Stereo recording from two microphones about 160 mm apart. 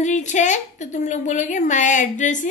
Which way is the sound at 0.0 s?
50° left (ahead or behind).